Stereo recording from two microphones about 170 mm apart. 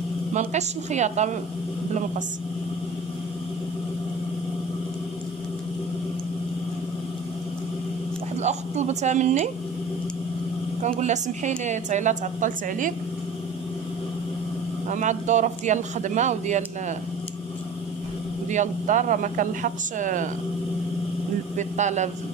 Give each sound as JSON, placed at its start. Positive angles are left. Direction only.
{"t": 0.3, "sound": "a woman's voice", "side_deg": -45}
{"t": 8.4, "sound": "a woman's voice", "side_deg": -40}
{"t": 10.8, "sound": "a woman's voice", "side_deg": -45}
{"t": 14.9, "sound": "a woman's voice", "side_deg": -45}
{"t": 18.5, "sound": "a woman's voice", "side_deg": -45}
{"t": 21.5, "sound": "a woman's voice", "side_deg": -45}